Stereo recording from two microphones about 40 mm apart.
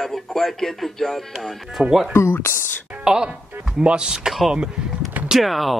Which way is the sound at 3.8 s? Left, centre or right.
Right.